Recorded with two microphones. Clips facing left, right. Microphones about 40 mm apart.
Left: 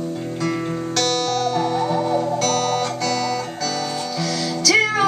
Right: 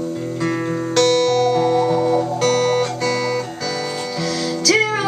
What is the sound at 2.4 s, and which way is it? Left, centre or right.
Music, centre.